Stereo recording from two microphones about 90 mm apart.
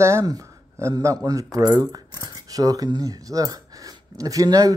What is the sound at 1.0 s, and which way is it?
Speech, 45° right (ahead or behind).